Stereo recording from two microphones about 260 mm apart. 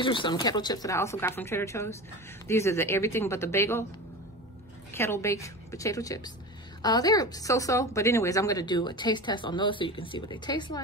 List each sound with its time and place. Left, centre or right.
0.0 s a woman's voice: centre
4.9 s a woman's voice: centre